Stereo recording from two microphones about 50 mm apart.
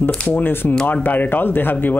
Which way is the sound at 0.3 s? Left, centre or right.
Left.